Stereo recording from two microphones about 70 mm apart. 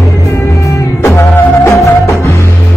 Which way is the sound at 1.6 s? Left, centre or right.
Left.